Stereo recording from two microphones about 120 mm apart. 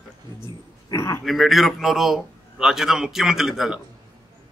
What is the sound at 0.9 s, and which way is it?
Speech, 25° left (ahead or behind).